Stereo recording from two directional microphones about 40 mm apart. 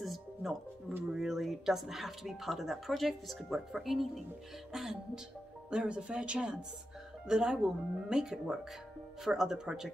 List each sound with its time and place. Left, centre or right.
0.0 s music: centre
1.1 s speech: centre
5.7 s speech: right